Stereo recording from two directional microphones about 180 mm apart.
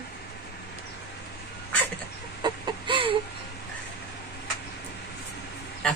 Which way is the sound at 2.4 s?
30° right (ahead or behind).